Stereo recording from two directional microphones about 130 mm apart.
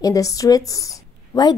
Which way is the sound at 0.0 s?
25° left (ahead or behind).